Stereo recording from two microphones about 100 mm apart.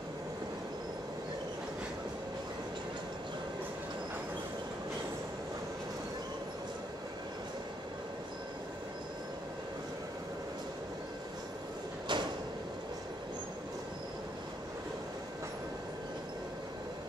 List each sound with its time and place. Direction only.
12.1 s sliding door: 50° right (ahead or behind)